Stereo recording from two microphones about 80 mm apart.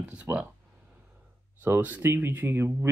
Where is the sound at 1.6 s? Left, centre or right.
Right.